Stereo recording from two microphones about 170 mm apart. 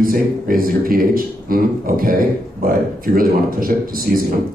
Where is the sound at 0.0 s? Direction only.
55° right (ahead or behind).